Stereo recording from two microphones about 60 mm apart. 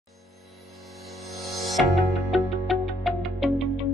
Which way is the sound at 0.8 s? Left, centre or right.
Centre.